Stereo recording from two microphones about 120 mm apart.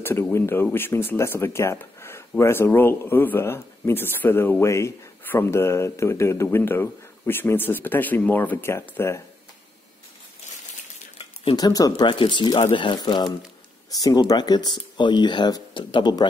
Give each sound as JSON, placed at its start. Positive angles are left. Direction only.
{"t": 0.0, "sound": "speech", "side_deg": 15}
{"t": 11.5, "sound": "speech", "side_deg": 30}
{"t": 12.1, "sound": "speech", "side_deg": 45}